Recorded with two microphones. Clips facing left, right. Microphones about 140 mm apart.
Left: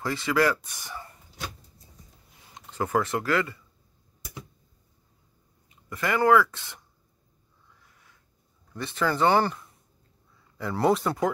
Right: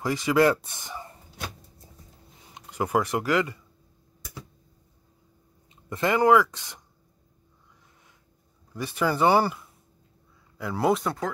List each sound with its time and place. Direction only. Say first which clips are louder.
0.0 s speech: right 3 dB; 15° right (ahead or behind)
2.5 s speech: right 1 dB; 15° right (ahead or behind)
5.7 s speech: right 3 dB; 25° right (ahead or behind)
8.7 s speech: right 1 dB; 10° right (ahead or behind)